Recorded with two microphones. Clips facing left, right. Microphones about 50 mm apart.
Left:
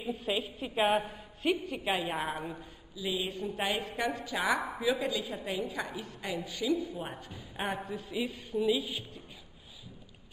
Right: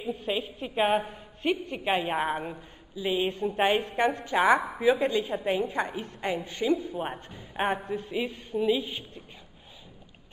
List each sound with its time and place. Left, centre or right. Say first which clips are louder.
0.0 s a woman's voice: right 3 dB; centre
1.9 s a woman's voice: right 6 dB; right
8.5 s a woman's voice: right 3 dB; centre